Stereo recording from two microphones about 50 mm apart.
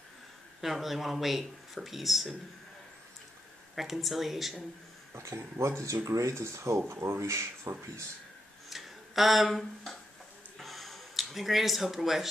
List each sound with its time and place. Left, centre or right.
0.6 s speech: centre
3.7 s speech: centre
5.1 s speech: right
6.9 s speech: right
8.6 s tick-tock: centre
10.6 s a sound: centre